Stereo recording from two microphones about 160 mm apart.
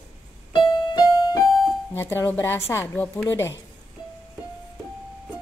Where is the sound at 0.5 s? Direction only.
30° left (ahead or behind).